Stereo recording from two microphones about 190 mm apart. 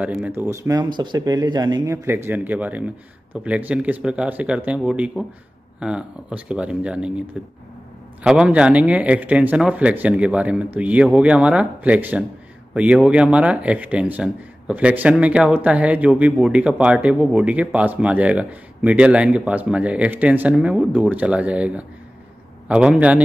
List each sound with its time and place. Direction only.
0.0 s speech: 5° right (ahead or behind)